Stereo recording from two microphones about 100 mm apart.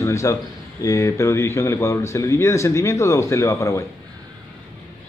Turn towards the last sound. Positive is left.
turn(degrees=30)  # may be behind; listen again after turning